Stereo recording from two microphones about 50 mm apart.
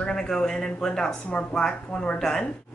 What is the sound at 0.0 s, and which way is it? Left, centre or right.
A woman's voice, centre.